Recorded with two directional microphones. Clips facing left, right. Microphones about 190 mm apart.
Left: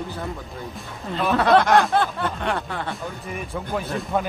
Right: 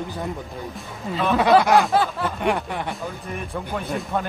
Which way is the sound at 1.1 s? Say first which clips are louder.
Right 1 dB; centre (ahead or behind).